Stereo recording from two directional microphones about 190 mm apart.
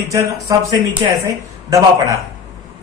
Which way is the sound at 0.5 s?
20° right (ahead or behind).